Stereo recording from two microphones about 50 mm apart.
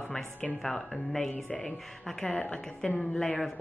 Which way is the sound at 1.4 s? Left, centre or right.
Centre.